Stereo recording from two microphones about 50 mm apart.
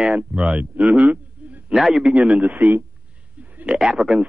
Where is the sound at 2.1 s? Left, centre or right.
Right.